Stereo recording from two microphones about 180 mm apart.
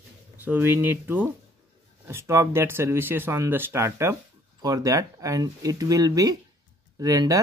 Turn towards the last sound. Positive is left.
turn(degrees=-20)  # may be behind; listen again after turning